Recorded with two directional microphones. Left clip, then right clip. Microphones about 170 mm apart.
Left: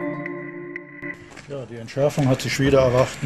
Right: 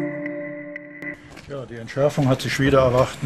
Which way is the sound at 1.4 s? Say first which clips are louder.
Right 1 dB; 10° left (ahead or behind).